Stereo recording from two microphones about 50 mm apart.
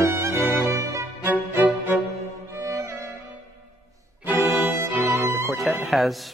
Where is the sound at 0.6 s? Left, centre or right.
Right.